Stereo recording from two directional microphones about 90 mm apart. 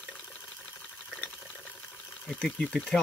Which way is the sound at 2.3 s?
10° left (ahead or behind).